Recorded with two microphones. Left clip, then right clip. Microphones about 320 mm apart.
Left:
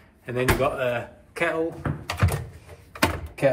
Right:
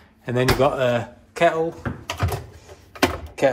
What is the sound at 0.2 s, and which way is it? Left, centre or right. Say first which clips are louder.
Speech: right 4 dB; right.